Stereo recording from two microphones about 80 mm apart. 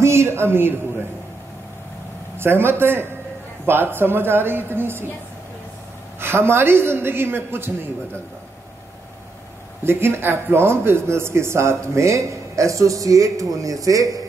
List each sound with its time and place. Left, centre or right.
0.0 s a sound: right
2.3 s a woman's voice: right
6.1 s a woman's voice: right
9.8 s speech: right